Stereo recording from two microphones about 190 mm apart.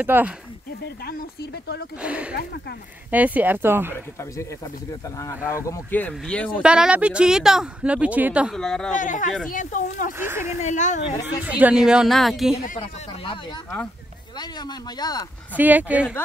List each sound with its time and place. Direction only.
0.0 s speech: 10° right (ahead or behind)
1.0 s speech: 55° left (ahead or behind)
2.0 s speech: 5° right (ahead or behind)
3.9 s speech: 15° left (ahead or behind)
6.6 s speech: 5° right (ahead or behind)
8.9 s speech: 40° left (ahead or behind)
10.1 s speech: 10° right (ahead or behind)
10.6 s speech: 40° left (ahead or behind)
11.4 s speech: 5° right (ahead or behind)
12.7 s speech: 25° left (ahead or behind)
14.4 s speech: 20° left (ahead or behind)
15.5 s speech: 10° right (ahead or behind)